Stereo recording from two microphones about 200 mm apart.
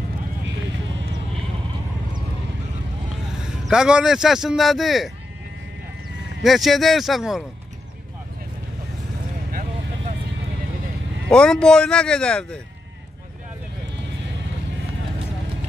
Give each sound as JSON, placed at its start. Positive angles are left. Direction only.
{"t": 3.3, "sound": "speech", "side_deg": -5}
{"t": 6.4, "sound": "speech", "side_deg": 0}
{"t": 9.5, "sound": "vehicle", "side_deg": -40}
{"t": 11.2, "sound": "speech", "side_deg": 5}